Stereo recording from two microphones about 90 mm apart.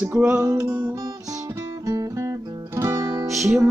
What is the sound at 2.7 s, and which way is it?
Music, 35° right (ahead or behind).